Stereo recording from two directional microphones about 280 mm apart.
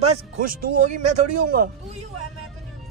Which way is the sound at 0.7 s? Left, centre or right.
Right.